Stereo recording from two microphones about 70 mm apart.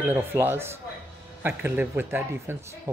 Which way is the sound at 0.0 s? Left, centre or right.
Right.